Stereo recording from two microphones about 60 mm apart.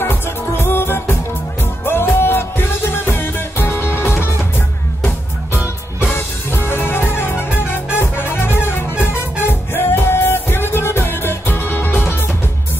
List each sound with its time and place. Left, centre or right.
0.0 s music: left
6.1 s music: left
8.9 s music: right
9.5 s music: left